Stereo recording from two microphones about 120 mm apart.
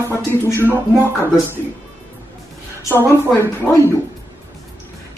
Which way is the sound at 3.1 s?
20° left (ahead or behind).